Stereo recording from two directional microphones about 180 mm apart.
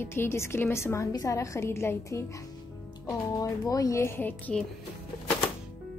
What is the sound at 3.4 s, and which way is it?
A woman's voice, 20° left (ahead or behind).